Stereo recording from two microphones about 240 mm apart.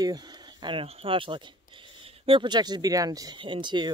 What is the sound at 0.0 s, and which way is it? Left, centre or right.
Speech, centre.